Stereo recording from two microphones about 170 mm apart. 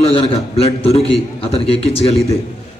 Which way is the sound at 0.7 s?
35° left (ahead or behind).